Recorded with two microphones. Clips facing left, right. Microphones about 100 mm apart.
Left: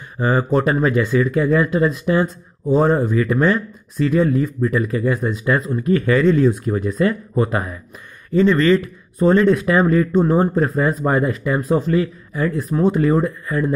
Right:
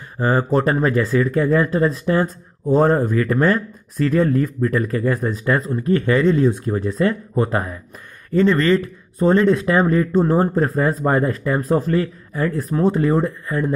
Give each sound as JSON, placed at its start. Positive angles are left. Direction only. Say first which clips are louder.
{"t": 0.2, "sound": "speech", "louder": "even", "side_deg": -40}